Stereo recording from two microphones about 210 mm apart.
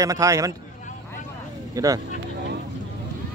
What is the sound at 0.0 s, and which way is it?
Speech, 15° right (ahead or behind).